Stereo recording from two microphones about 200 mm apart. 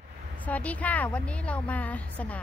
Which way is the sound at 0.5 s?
5° left (ahead or behind).